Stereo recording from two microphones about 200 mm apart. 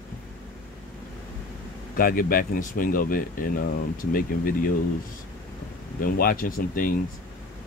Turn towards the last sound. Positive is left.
turn(degrees=45)  # may be behind; listen again after turning